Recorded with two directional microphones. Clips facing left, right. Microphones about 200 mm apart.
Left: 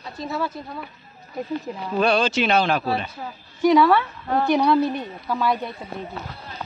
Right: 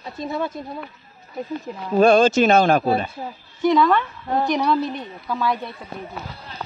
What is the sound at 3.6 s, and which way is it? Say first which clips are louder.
A woman's voice: left 1 dB; 10° left (ahead or behind).